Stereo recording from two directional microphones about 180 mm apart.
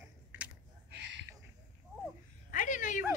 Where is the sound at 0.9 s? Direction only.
80° right.